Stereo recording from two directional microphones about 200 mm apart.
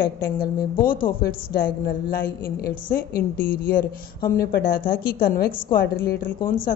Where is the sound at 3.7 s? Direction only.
50° left (ahead or behind).